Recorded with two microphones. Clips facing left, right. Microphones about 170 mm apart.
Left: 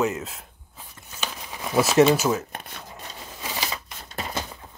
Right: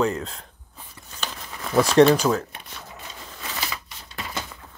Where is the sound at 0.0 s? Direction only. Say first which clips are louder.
Right 1 dB; 5° left (ahead or behind).